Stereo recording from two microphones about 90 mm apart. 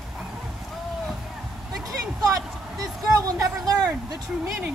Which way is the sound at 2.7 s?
40° right (ahead or behind).